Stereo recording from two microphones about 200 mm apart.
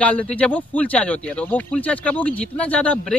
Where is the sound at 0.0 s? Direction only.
5° left (ahead or behind).